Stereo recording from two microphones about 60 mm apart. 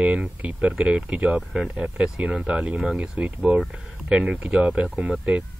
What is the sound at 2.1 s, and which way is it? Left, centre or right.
Speech, centre.